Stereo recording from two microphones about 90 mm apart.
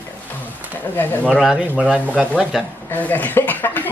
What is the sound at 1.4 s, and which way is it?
A woman's voice, 10° right (ahead or behind).